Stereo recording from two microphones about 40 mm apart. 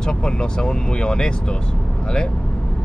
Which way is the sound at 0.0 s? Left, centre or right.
Left.